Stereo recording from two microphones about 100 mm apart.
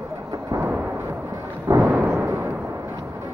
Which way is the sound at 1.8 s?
15° right (ahead or behind).